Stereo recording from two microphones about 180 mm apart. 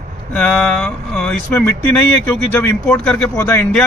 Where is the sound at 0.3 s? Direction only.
5° left (ahead or behind).